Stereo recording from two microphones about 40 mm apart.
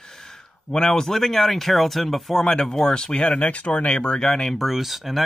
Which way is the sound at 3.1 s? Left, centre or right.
Left.